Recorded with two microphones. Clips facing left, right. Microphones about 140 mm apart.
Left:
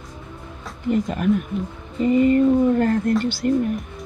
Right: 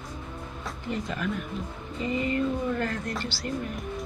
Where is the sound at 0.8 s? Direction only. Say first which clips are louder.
Left 11 dB; 45° left (ahead or behind).